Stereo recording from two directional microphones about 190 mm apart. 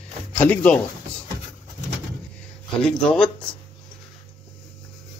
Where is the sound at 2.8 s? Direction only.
5° left (ahead or behind).